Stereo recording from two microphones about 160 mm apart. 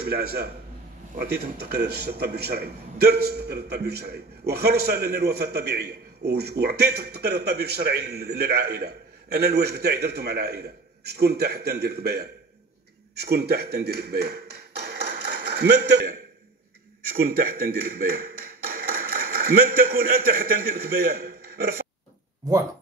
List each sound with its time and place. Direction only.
0.0 s a man's voice: 75° right (ahead or behind)
1.1 s a man's voice: 90° right
17.0 s speech: 65° right (ahead or behind)
22.4 s speech: 25° right (ahead or behind)